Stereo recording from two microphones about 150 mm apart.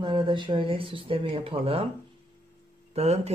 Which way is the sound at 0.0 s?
30° right (ahead or behind).